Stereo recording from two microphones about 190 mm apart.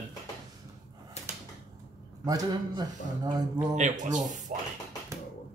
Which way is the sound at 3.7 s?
40° right (ahead or behind).